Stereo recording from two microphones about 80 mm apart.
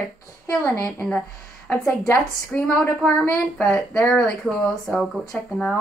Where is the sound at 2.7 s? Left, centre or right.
Centre.